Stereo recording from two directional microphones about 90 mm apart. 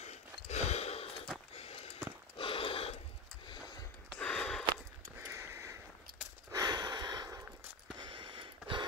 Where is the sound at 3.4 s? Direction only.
55° left (ahead or behind).